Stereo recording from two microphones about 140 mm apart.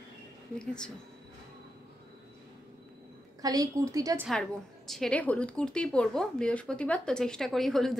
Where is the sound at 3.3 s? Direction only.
25° right (ahead or behind).